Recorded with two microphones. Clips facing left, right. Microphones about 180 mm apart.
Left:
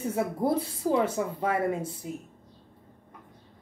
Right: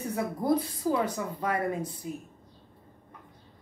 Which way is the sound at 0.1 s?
25° left (ahead or behind).